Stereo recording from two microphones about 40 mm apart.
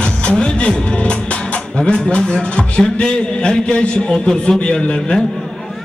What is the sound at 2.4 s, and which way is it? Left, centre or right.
A man's voice, left.